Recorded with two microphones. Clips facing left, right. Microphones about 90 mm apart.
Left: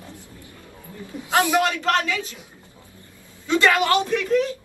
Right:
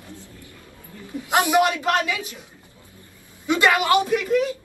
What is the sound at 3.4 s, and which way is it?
A woman's voice, 15° right (ahead or behind).